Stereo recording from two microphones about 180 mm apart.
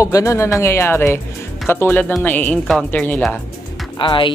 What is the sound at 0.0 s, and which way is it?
Speech, 15° left (ahead or behind).